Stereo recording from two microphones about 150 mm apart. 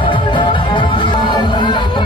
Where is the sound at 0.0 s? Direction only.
35° left (ahead or behind).